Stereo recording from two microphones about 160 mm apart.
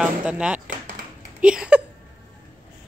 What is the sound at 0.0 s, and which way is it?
Chop, 5° right (ahead or behind).